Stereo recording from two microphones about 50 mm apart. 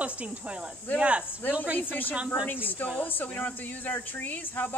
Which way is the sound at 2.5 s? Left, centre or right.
Left.